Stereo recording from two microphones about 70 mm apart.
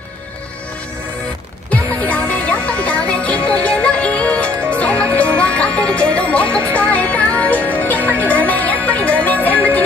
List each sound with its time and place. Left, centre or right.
1.7 s music: left